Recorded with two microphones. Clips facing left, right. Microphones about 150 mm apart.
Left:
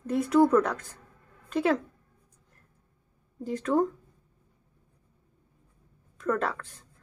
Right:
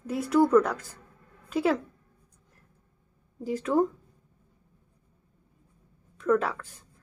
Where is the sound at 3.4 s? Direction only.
5° right (ahead or behind).